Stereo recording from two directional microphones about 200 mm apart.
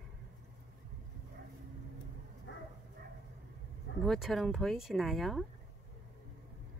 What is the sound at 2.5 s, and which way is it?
Bow-wow, 65° left (ahead or behind).